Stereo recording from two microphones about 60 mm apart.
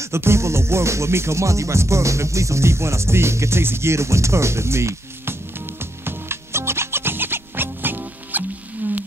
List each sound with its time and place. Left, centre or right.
0.0 s music: right